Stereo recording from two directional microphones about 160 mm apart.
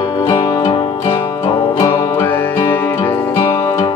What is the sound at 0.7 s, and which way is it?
Music, 35° left (ahead or behind).